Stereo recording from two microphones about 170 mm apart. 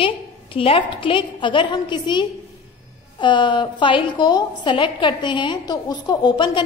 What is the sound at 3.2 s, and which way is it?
A woman's voice, 25° left (ahead or behind).